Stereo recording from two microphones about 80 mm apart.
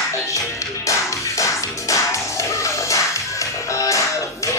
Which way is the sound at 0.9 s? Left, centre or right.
Left.